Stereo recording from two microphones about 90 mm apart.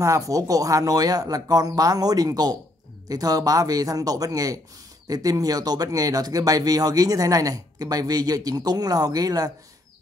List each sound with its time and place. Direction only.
0.0 s speech: 40° right (ahead or behind)